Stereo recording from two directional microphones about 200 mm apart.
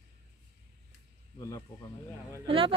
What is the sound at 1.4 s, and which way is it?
Speech, 15° left (ahead or behind).